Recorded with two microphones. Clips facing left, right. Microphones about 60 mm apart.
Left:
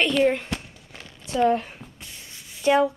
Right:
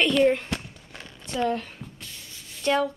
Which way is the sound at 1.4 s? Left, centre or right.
Centre.